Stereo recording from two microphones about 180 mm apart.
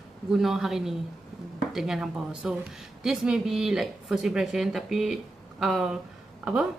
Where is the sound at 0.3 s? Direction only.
Centre (ahead or behind).